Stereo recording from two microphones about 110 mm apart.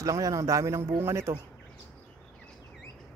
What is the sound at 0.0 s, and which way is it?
A man's voice, 30° right (ahead or behind).